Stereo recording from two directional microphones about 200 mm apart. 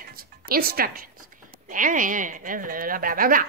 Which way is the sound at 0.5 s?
50° right (ahead or behind).